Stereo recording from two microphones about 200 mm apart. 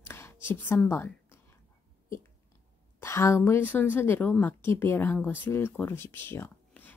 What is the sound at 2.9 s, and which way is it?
A woman's voice, 15° left (ahead or behind).